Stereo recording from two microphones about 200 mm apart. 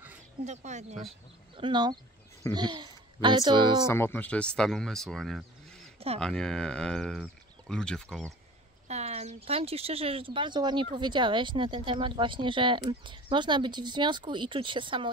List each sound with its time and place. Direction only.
0.5 s speech: 35° right (ahead or behind)
1.6 s a child's voice: 20° right (ahead or behind)
3.8 s speech: 10° left (ahead or behind)
8.8 s speech: 35° right (ahead or behind)